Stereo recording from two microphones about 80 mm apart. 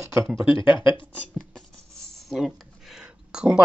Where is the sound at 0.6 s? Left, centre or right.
Left.